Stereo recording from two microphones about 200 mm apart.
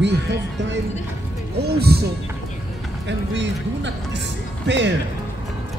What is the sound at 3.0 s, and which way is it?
Speech, 60° right (ahead or behind).